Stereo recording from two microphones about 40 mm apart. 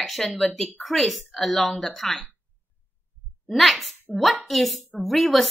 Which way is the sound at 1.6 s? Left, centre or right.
Centre.